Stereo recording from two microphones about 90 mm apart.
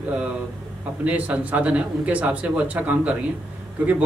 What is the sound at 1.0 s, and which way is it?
Speech, 15° right (ahead or behind).